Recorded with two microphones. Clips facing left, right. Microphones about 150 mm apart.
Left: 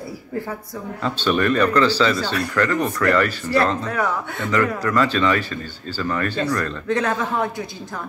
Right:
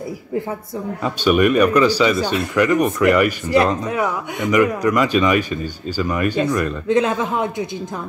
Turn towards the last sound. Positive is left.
turn(degrees=-20)  # may be behind; listen again after turning